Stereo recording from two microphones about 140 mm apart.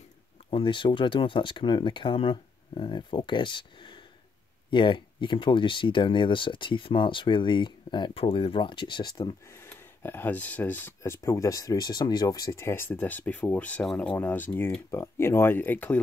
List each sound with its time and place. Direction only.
0.5 s speech: 40° left (ahead or behind)
9.7 s speech: 15° left (ahead or behind)